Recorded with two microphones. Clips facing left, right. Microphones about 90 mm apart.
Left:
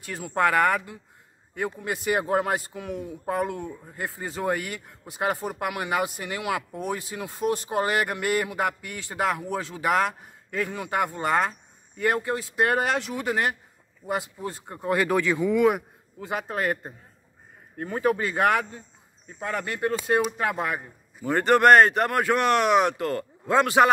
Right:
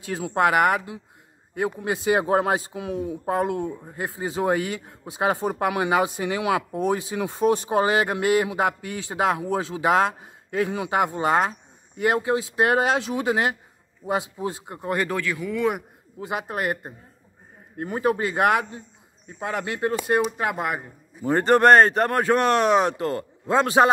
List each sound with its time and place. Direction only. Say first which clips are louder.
0.1 s speech: right 2 dB; 20° right (ahead or behind); by 15.0 s centre (ahead or behind)
15.0 s speech: left 4 dB; 20° left (ahead or behind)
16.2 s speech: right 1 dB; 10° right (ahead or behind)
21.2 s speech: right 2 dB; 35° right (ahead or behind)